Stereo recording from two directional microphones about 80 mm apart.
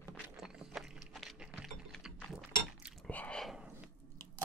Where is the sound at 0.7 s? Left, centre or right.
Centre.